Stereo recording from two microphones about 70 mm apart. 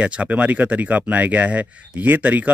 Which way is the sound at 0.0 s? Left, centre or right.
Centre.